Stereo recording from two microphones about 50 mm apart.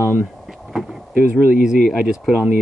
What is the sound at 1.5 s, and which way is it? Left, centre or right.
Speech, centre.